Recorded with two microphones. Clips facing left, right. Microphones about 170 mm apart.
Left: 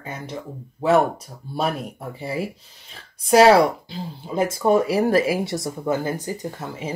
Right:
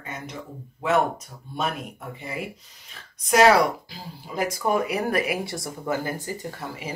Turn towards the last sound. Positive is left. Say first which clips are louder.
# left 4 dB
turn(degrees=20)  # may be behind; listen again after turning